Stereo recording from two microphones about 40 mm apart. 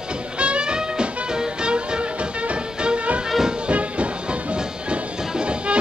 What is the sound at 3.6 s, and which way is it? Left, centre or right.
Music, right.